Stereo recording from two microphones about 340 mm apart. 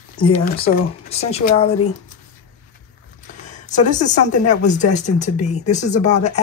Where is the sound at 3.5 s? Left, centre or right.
Left.